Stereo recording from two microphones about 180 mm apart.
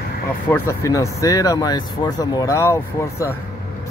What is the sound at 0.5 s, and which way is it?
Speech, 15° left (ahead or behind).